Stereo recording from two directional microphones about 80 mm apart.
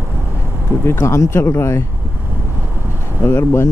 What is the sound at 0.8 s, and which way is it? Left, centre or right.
Speech, left.